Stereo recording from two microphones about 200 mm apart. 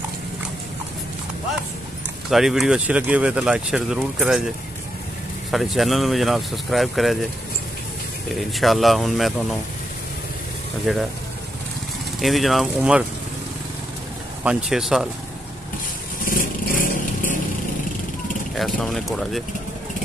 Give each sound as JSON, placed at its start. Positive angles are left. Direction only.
{"t": 2.3, "sound": "speech", "side_deg": 0}
{"t": 5.5, "sound": "speech", "side_deg": 0}
{"t": 8.3, "sound": "speech", "side_deg": 0}
{"t": 10.9, "sound": "speech", "side_deg": 0}
{"t": 12.2, "sound": "speech", "side_deg": 0}
{"t": 14.4, "sound": "speech", "side_deg": -5}
{"t": 16.3, "sound": "vehicle", "side_deg": 45}
{"t": 18.5, "sound": "speech", "side_deg": 0}